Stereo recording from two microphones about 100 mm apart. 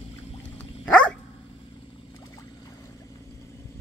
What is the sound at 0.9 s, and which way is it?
Dog, 10° left (ahead or behind).